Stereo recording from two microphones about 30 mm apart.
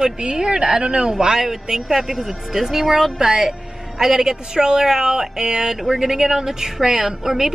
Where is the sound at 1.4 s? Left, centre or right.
Centre.